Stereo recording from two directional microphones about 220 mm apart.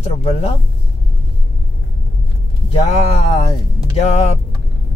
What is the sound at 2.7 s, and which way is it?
Speech, 30° left (ahead or behind).